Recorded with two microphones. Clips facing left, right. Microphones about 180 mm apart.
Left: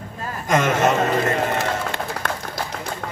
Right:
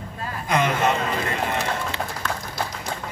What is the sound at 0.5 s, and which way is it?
Speech, 45° left (ahead or behind).